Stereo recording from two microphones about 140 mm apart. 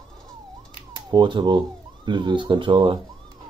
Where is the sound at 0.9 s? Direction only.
30° right (ahead or behind).